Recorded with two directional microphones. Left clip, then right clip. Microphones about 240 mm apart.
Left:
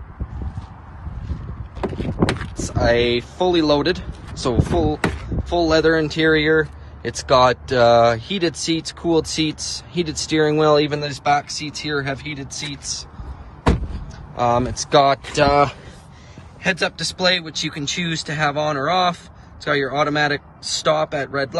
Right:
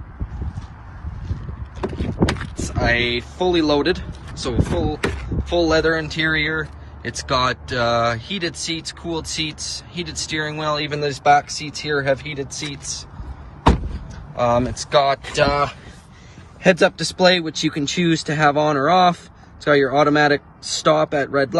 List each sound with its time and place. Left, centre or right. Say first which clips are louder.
2.5 s speech: left 4 dB; left
10.9 s speech: right 3 dB; centre
14.4 s speech: even; centre
14.9 s speech: left 3 dB; left
16.6 s speech: right 5 dB; centre